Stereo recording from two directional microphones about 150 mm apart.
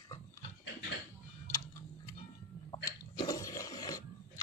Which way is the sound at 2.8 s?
25° left (ahead or behind).